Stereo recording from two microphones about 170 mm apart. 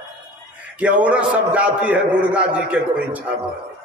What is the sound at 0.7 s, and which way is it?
A man's voice, 5° right (ahead or behind).